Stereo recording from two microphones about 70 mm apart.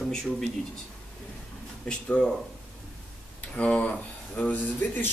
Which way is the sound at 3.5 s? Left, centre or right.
Centre.